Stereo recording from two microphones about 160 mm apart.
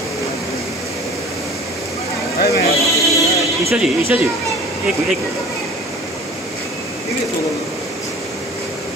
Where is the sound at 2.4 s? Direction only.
75° left (ahead or behind).